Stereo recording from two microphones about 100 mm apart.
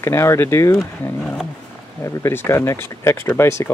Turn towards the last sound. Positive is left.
turn(degrees=25)  # may be behind; listen again after turning